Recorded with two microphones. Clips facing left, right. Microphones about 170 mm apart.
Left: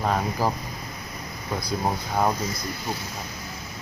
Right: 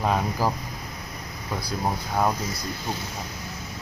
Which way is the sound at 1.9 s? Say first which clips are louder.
Even; 5° left (ahead or behind).